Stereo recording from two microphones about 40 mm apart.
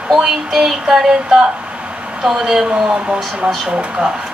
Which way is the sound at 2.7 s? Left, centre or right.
Right.